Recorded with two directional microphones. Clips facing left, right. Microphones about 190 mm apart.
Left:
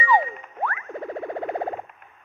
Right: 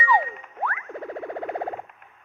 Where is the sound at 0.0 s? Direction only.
40° left (ahead or behind).